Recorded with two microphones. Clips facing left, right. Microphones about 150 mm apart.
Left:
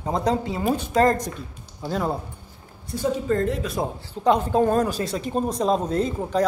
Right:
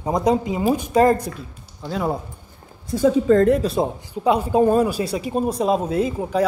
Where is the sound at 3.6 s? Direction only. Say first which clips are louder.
Right 6 dB; 30° right (ahead or behind).